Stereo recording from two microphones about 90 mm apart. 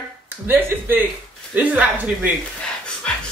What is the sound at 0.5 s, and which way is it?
Speech, 25° right (ahead or behind).